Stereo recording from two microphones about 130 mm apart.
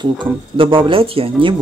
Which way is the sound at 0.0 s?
40° right (ahead or behind).